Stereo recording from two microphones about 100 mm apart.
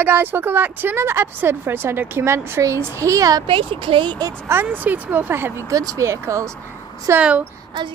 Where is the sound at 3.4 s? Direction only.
60° right (ahead or behind).